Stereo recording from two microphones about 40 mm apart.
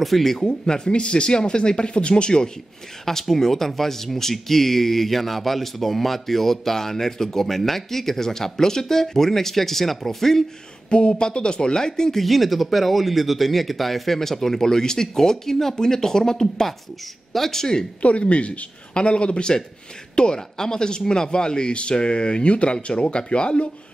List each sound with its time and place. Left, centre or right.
0.0 s speech: centre
0.5 s speech: left
3.1 s speech: centre
10.9 s speech: left
12.2 s speech: centre
18.0 s speech: left